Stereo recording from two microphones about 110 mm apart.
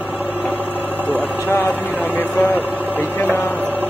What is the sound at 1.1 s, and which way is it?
Speech, 20° left (ahead or behind).